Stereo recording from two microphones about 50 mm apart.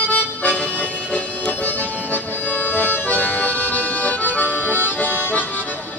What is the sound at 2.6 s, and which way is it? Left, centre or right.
Music, left.